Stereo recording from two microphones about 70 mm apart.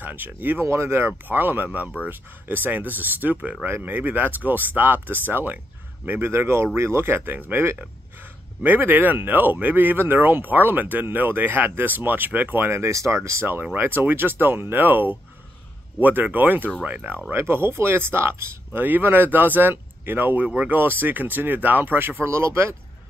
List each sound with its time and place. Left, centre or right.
0.0 s speech: right
0.7 s speech: right
20.4 s speech: centre
20.7 s speech: right